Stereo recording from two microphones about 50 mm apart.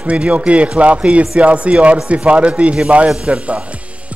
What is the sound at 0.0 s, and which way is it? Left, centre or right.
Speech, right.